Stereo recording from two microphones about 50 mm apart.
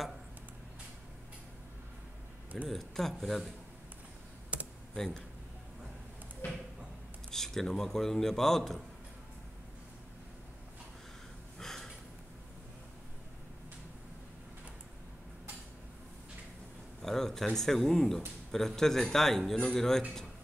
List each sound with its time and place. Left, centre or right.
2.7 s speech: centre
4.9 s speech: centre
6.4 s speech: left
7.2 s a man's voice: centre
11.5 s snort: centre
17.0 s a man's voice: centre